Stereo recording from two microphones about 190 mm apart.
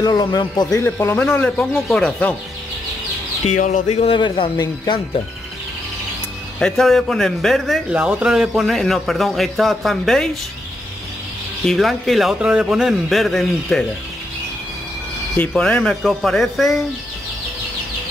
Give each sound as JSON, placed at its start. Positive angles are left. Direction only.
{"t": 0.0, "sound": "speech", "side_deg": 20}
{"t": 3.4, "sound": "speech", "side_deg": 40}
{"t": 6.6, "sound": "a man's voice", "side_deg": 0}
{"t": 11.6, "sound": "a man's voice", "side_deg": 0}
{"t": 15.3, "sound": "a man's voice", "side_deg": 5}